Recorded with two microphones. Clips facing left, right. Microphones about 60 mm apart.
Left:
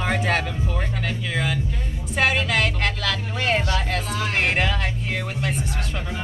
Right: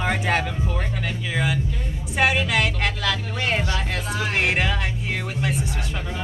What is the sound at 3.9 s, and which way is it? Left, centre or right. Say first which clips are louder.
Speech: even; centre.